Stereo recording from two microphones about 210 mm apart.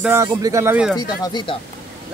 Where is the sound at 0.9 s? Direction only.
20° left (ahead or behind).